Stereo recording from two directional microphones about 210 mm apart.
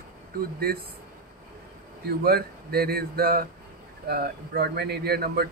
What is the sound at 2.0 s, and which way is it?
Speech, 45° right (ahead or behind).